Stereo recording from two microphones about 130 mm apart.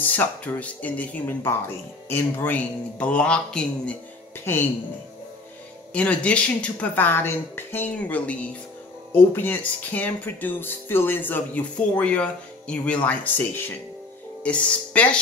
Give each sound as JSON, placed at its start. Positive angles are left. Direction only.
{"t": 0.0, "sound": "speech", "side_deg": 15}
{"t": 5.9, "sound": "speech", "side_deg": 10}